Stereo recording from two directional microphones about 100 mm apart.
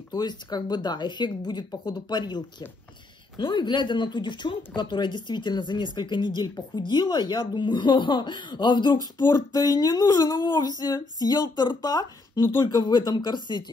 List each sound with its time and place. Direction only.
0.1 s speech: 45° left (ahead or behind)
12.4 s speech: 25° left (ahead or behind)
12.6 s speech: 45° left (ahead or behind)